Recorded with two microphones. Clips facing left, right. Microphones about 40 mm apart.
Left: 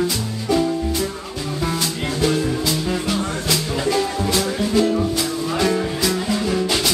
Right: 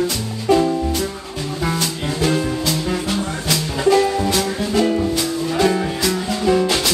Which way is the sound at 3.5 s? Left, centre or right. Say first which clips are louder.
Right 6 dB; centre.